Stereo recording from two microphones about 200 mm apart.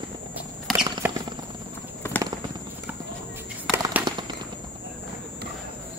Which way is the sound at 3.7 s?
15° right (ahead or behind).